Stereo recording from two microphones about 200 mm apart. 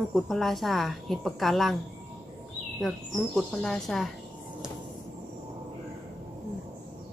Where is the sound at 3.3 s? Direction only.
Centre (ahead or behind).